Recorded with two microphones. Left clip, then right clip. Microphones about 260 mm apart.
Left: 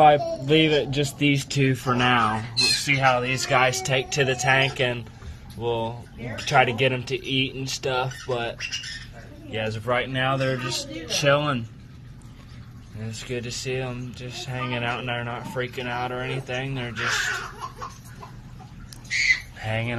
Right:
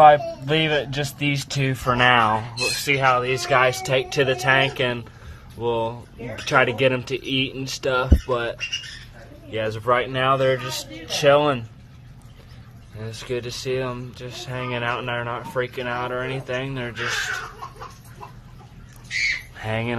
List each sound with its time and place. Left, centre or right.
0.0 s speech: centre
13.0 s speech: right
19.6 s speech: centre